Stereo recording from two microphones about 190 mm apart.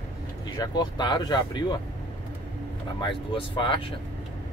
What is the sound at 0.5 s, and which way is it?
Speech, 25° left (ahead or behind).